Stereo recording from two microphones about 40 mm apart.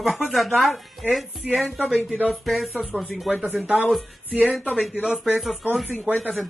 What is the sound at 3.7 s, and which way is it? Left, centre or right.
Speech, centre.